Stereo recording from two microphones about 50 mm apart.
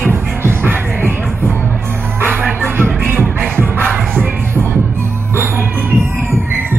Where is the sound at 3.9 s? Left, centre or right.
Right.